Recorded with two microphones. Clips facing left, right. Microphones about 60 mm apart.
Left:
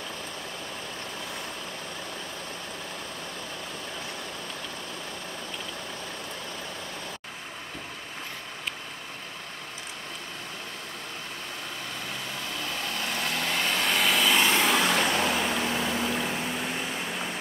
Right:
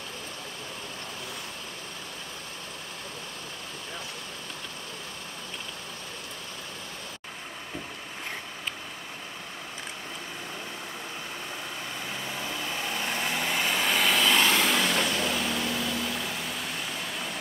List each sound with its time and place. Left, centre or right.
12.1 s vehicle: centre
14.8 s vehicle: left